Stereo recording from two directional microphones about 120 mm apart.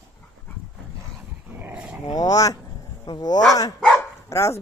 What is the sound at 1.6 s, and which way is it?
Dog, 10° right (ahead or behind).